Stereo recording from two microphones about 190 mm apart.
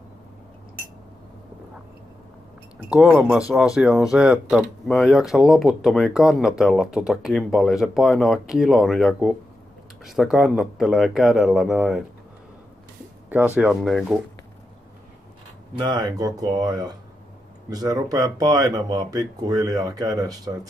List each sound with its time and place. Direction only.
2.9 s speech: 5° right (ahead or behind)
13.6 s speech: centre (ahead or behind)
15.8 s speech: 20° right (ahead or behind)